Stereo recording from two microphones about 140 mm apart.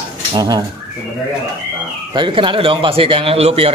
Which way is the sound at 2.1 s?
35° right (ahead or behind).